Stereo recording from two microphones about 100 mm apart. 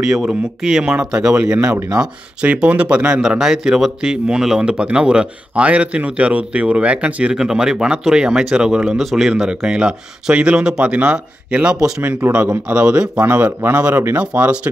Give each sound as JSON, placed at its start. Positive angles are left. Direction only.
{"t": 0.0, "sound": "speech", "side_deg": -5}
{"t": 12.0, "sound": "speech", "side_deg": -20}